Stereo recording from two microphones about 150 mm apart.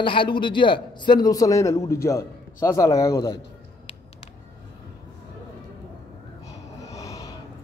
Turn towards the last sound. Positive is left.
turn(degrees=25)  # may be behind; listen again after turning